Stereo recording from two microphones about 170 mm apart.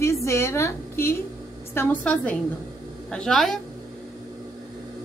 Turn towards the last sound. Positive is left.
turn(degrees=5)  # may be behind; listen again after turning